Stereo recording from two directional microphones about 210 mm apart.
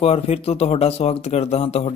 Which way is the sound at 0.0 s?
30° left (ahead or behind).